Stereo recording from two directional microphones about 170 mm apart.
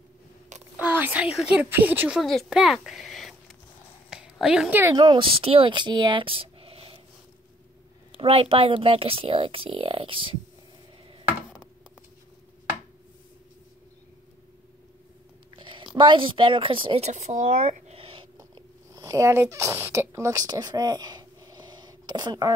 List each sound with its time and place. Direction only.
0.7 s speech: 10° right (ahead or behind)
4.1 s a sound: 5° right (ahead or behind)
4.9 s speech: 30° right (ahead or behind)
8.2 s speech: 35° right (ahead or behind)
11.2 s a sound: 5° right (ahead or behind)
15.5 s speech: 30° right (ahead or behind)
17.1 s speech: 45° right (ahead or behind)
17.9 s a sound: 30° right (ahead or behind)
18.4 s speech: 20° right (ahead or behind)